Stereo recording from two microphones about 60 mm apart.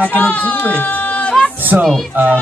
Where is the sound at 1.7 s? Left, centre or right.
Right.